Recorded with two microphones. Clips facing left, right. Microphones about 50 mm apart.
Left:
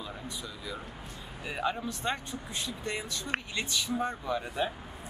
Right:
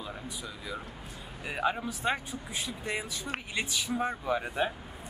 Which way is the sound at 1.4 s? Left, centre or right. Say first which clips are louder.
Right 2 dB; centre.